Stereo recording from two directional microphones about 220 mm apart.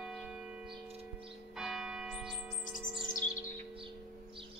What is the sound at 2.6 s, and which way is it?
Music, 35° left (ahead or behind).